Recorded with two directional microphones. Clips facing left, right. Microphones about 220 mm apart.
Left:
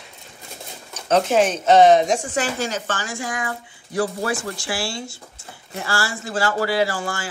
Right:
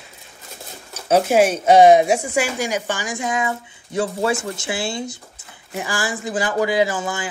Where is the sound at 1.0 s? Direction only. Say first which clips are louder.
Right 2 dB; 10° right (ahead or behind).